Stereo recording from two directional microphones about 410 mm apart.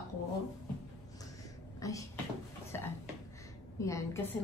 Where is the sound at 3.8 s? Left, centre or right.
Centre.